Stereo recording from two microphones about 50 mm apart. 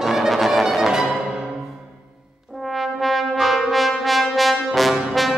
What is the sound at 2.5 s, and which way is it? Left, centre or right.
Brass instrument, centre.